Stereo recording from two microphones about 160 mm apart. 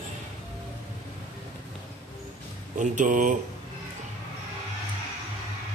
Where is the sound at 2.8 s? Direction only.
50° right (ahead or behind).